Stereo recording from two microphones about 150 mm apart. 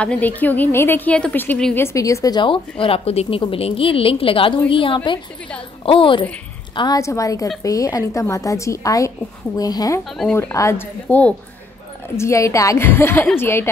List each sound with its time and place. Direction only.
0.0 s a woman's voice: 10° left (ahead or behind)
1.8 s a woman's voice: 20° left (ahead or behind)
7.0 s a woman's voice: 20° left (ahead or behind)